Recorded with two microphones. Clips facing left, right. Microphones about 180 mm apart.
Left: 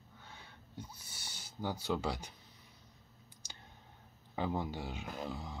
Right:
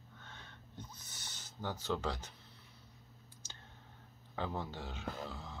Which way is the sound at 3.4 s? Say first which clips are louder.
Left 2 dB; 15° left (ahead or behind).